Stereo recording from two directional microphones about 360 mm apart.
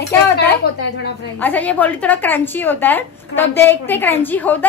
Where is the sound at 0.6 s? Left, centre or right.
Left.